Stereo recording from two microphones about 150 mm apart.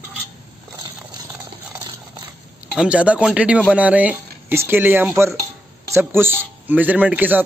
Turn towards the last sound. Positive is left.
turn(degrees=-10)  # may be behind; listen again after turning